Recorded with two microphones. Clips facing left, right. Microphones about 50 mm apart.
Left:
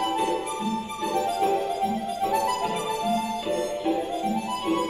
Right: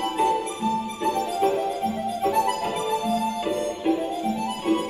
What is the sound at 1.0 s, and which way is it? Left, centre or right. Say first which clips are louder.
Music: right 1 dB; right.